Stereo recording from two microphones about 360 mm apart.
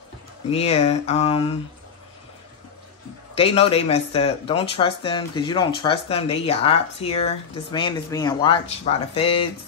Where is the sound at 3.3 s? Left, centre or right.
Centre.